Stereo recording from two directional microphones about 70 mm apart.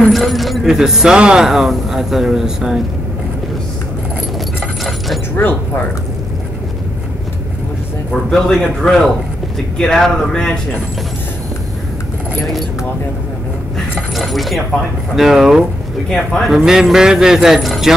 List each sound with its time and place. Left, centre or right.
0.1 s speech: centre
4.8 s keys jangling: centre
5.3 s speech: left
8.1 s a man's voice: centre
14.1 s speech: centre
16.5 s speech: centre